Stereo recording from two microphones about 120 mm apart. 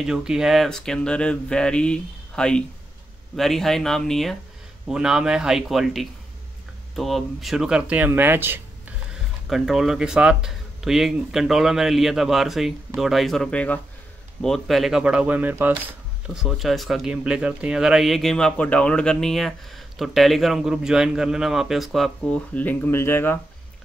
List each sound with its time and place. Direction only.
0.0 s speech: 5° right (ahead or behind)
9.5 s speech: 5° right (ahead or behind)
16.3 s speech: centre (ahead or behind)
22.5 s speech: 15° left (ahead or behind)